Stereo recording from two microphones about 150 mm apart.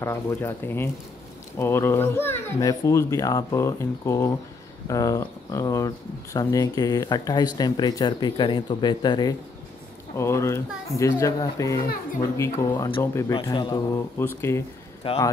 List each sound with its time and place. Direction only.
0.0 s a child's voice: 15° left (ahead or behind)
10.1 s a child's voice: 20° left (ahead or behind)
15.0 s speech: 35° left (ahead or behind)